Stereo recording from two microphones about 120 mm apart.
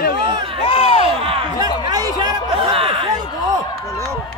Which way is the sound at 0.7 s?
55° left (ahead or behind).